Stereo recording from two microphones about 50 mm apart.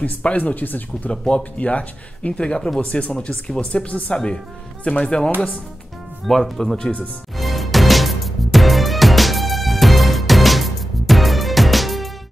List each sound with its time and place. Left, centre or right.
0.0 s speech: left
1.1 s speech: centre
1.6 s speech: left
6.2 s speech: centre
7.3 s music: centre